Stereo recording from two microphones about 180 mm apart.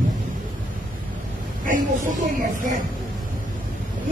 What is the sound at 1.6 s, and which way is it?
A woman's voice, 45° right (ahead or behind).